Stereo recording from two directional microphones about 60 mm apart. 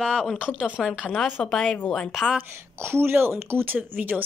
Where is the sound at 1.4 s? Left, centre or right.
Centre.